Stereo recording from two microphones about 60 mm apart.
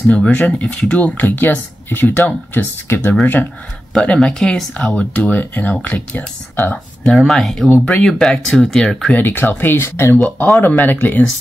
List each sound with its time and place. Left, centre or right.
0.1 s speech: left
3.9 s speech: centre
4.7 s speech: left
7.2 s speech: centre
9.1 s speech: left
10.1 s speech: left